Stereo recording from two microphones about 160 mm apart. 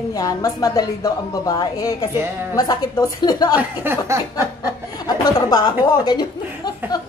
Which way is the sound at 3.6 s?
15° right (ahead or behind).